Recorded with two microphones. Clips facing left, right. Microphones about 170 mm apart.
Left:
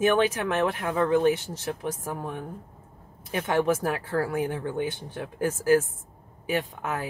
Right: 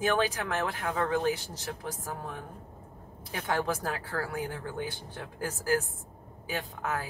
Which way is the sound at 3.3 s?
20° left (ahead or behind).